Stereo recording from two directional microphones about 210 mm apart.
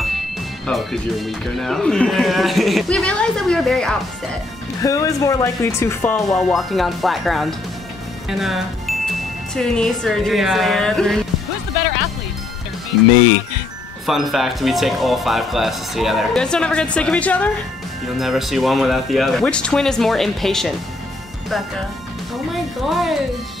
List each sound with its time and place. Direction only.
0.7 s speech: centre (ahead or behind)
4.8 s speech: 15° left (ahead or behind)
6.3 s speech: centre (ahead or behind)
14.0 s speech: centre (ahead or behind)
22.5 s speech: centre (ahead or behind)